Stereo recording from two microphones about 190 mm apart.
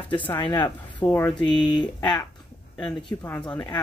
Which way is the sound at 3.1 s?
10° left (ahead or behind).